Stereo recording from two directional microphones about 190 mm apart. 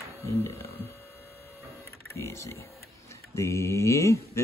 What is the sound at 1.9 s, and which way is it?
Speech, 15° left (ahead or behind).